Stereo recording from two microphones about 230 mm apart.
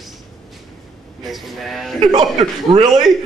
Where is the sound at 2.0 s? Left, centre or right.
Centre.